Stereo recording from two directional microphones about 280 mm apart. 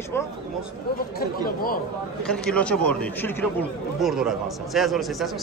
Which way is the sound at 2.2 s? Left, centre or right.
Centre.